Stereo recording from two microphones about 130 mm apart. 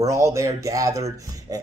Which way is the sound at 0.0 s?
25° right (ahead or behind).